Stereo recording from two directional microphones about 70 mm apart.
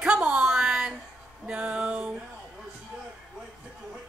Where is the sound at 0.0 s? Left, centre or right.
Centre.